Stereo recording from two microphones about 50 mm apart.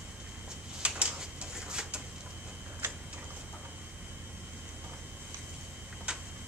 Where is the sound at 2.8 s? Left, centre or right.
Right.